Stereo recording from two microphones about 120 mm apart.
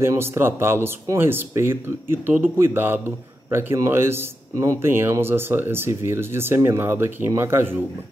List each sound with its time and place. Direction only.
0.0 s a man's voice: 20° right (ahead or behind)